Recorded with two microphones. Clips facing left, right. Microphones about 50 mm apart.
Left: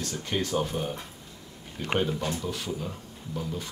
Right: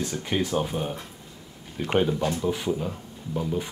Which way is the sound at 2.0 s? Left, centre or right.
Centre.